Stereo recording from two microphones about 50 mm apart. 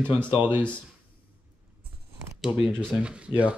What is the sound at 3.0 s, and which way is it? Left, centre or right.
Speech, right.